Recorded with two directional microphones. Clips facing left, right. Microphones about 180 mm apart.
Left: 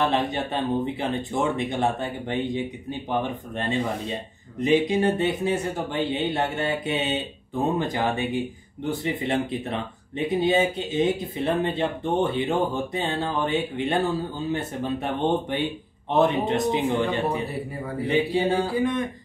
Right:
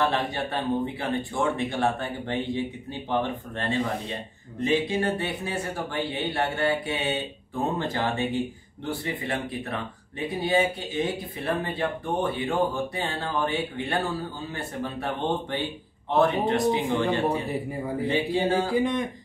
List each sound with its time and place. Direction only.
0.0 s speech: 20° left (ahead or behind)
18.8 s speech: 15° right (ahead or behind)